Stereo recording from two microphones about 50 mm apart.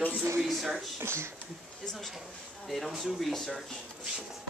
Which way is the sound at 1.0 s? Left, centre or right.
Right.